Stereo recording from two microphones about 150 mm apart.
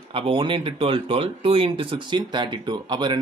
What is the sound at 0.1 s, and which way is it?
Speech, 35° right (ahead or behind).